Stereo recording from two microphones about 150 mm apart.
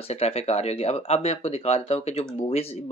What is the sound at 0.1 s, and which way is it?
Speech, 40° left (ahead or behind).